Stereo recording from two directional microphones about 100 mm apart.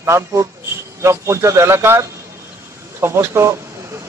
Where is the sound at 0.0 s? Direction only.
30° right (ahead or behind).